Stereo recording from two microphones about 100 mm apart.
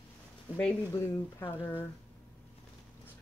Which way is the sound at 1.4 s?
20° left (ahead or behind).